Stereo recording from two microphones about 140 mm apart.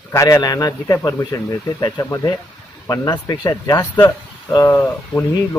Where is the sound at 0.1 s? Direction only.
20° left (ahead or behind).